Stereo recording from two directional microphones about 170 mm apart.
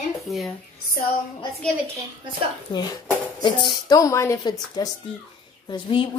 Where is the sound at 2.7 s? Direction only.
30° left (ahead or behind).